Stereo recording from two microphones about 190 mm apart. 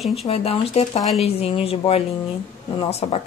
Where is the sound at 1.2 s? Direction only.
30° left (ahead or behind).